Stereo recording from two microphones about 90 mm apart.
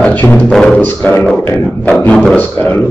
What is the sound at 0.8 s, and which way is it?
A man's voice, 20° left (ahead or behind).